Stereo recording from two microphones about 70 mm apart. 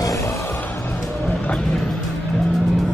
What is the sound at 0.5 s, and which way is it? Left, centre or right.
Music, left.